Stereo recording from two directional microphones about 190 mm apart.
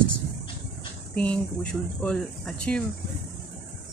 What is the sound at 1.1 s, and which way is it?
Speech, 5° left (ahead or behind).